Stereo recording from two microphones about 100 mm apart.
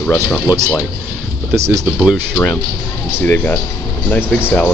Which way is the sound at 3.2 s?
15° left (ahead or behind).